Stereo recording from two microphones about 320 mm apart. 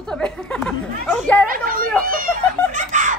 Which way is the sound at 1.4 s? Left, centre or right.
Right.